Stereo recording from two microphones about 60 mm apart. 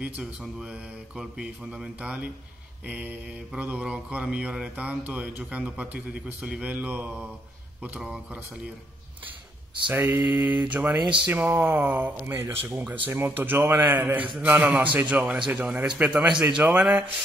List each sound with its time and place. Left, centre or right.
0.2 s speech: centre
1.7 s mantra: right
9.9 s speech: right
10.2 s mantra: right
12.3 s a man's voice: right
12.6 s mantra: right
13.1 s speech: right
14.4 s mantra: right
16.3 s speech: centre